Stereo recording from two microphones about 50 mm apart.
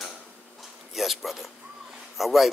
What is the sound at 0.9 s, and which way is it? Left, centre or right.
A man's voice, centre.